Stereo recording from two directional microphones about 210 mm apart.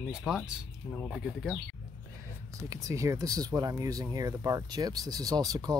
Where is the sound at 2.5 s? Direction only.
15° right (ahead or behind).